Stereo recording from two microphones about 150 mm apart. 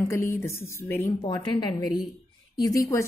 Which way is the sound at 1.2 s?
30° left (ahead or behind).